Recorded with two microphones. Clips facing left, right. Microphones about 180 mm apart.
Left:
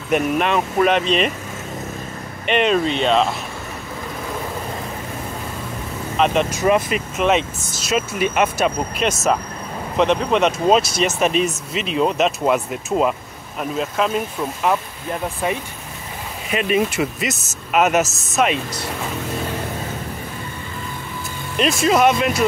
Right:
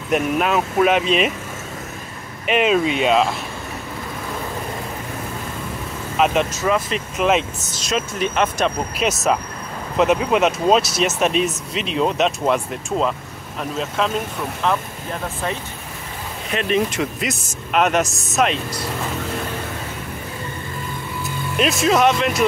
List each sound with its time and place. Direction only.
0.1 s speech: centre (ahead or behind)
2.4 s speech: 5° right (ahead or behind)
6.1 s speech: 5° right (ahead or behind)
6.5 s speech: 20° left (ahead or behind)
6.9 s speech: centre (ahead or behind)
16.4 s speech: 5° left (ahead or behind)
21.5 s speech: centre (ahead or behind)